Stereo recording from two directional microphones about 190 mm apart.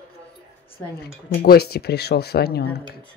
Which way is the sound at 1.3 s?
55° left (ahead or behind).